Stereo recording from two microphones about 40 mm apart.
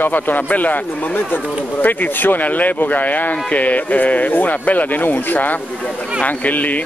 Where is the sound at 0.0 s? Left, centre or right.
Left.